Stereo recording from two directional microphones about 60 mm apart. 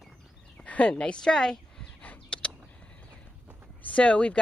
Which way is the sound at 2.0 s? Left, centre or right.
Centre.